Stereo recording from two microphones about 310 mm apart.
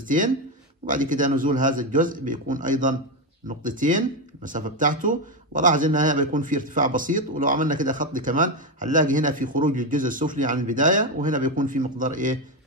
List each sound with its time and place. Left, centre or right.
0.8 s speech: right